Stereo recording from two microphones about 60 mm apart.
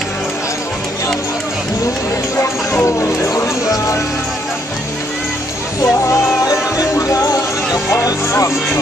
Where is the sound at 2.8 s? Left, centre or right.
Left.